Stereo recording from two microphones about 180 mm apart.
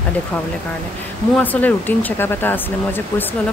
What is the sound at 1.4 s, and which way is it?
Speech, 10° left (ahead or behind).